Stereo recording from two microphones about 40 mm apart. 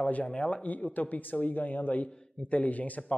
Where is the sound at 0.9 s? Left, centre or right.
Left.